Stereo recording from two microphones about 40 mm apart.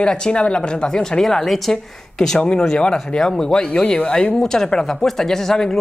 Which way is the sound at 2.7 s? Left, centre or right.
Centre.